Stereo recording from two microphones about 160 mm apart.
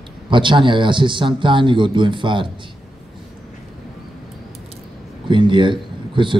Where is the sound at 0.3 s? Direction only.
30° right (ahead or behind).